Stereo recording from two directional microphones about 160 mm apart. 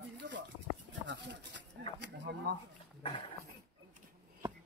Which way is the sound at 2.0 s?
90° right.